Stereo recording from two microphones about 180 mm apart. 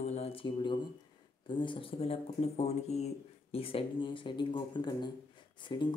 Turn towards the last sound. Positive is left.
turn(degrees=25)  # may be behind; listen again after turning